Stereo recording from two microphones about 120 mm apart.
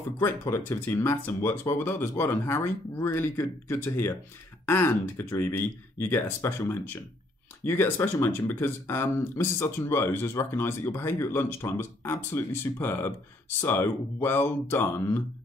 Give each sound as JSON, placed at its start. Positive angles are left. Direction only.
{"t": 0.2, "sound": "speech", "side_deg": 20}